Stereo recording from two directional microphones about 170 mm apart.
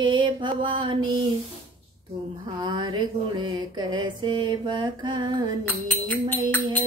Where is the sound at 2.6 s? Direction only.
25° right (ahead or behind).